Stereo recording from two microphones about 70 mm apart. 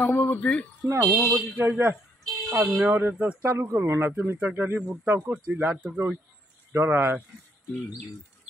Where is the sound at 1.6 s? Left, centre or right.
Right.